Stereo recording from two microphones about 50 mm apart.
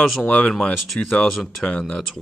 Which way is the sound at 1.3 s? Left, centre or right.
Centre.